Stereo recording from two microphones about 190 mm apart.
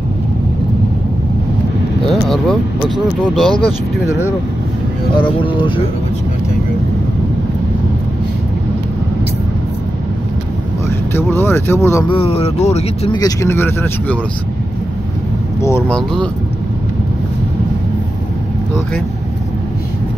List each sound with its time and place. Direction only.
2.0 s vehicle: centre (ahead or behind)
3.2 s speech: 5° left (ahead or behind)
5.1 s speech: 25° left (ahead or behind)
11.1 s speech: 10° left (ahead or behind)
12.1 s speech: 30° left (ahead or behind)
13.2 s speech: 15° left (ahead or behind)
15.9 s speech: 5° left (ahead or behind)